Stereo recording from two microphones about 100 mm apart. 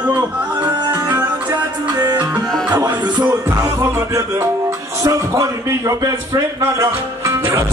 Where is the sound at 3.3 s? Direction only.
20° right (ahead or behind).